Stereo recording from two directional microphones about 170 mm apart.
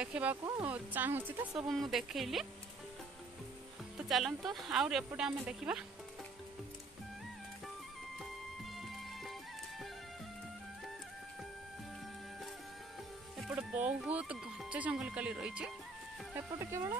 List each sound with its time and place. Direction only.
0.0 s speech: 10° right (ahead or behind)
4.0 s speech: centre (ahead or behind)
13.4 s speech: 5° right (ahead or behind)
16.3 s speech: 15° right (ahead or behind)